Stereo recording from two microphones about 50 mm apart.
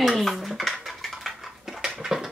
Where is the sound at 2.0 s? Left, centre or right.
Centre.